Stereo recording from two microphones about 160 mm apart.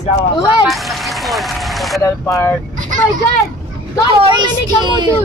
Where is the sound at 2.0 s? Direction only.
20° left (ahead or behind).